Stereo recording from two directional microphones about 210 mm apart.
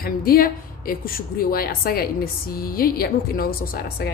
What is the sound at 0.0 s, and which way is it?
A woman's voice, 45° left (ahead or behind).